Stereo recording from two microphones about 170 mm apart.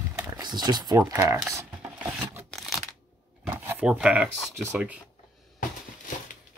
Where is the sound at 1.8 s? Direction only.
5° right (ahead or behind).